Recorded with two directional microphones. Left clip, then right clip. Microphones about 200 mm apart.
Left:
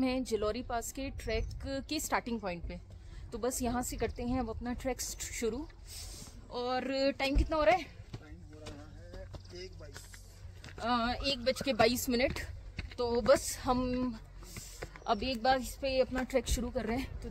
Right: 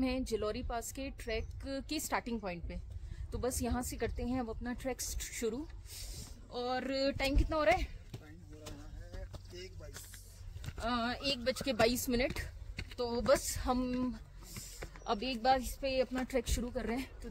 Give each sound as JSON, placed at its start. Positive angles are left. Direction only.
{"t": 0.0, "sound": "speech", "side_deg": 0}
{"t": 9.3, "sound": "a sound", "side_deg": -45}
{"t": 10.8, "sound": "speech", "side_deg": -5}